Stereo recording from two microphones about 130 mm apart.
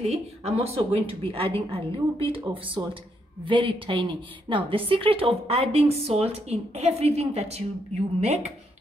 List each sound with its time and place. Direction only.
0.0 s a woman's voice: 55° right (ahead or behind)
2.8 s speech: 30° right (ahead or behind)
3.4 s a woman's voice: 40° right (ahead or behind); by 8.5 s 60° right (ahead or behind)